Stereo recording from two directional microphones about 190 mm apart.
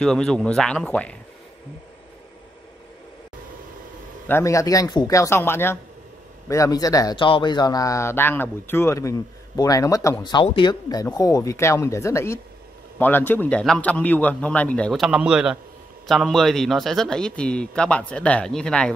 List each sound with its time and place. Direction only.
0.0 s a man's voice: 5° left (ahead or behind)
4.3 s a man's voice: 15° left (ahead or behind)